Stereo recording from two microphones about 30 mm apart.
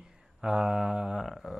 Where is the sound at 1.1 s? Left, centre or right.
Centre.